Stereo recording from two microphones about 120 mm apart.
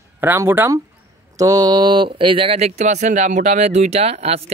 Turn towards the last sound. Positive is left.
turn(degrees=-60)  # may be behind; listen again after turning